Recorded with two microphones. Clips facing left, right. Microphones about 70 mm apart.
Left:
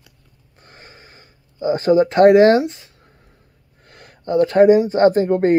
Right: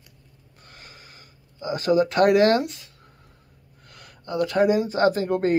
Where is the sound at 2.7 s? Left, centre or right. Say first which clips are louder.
Left 7 dB; left.